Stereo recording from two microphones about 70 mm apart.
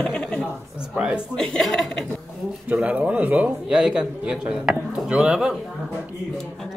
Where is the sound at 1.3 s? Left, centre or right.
Centre.